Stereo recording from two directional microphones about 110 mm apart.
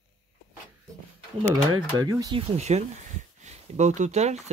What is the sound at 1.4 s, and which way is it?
Speech, 50° right (ahead or behind).